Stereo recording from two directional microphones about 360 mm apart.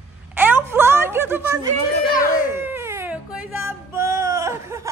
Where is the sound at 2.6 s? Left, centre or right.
Centre.